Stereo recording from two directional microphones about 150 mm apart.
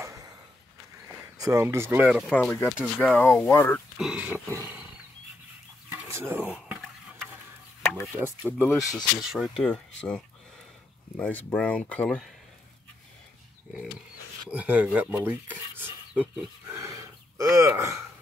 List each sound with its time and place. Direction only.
0.0 s a sound: 20° right (ahead or behind)
1.4 s cutlery: 20° right (ahead or behind)
2.3 s speech: 10° left (ahead or behind)
4.0 s cutlery: 10° right (ahead or behind)
5.9 s a sound: 15° right (ahead or behind)
8.2 s cutlery: 10° right (ahead or behind)
8.7 s speech: centre (ahead or behind)
14.5 s cutlery: 10° right (ahead or behind)
16.7 s gasp: 20° right (ahead or behind)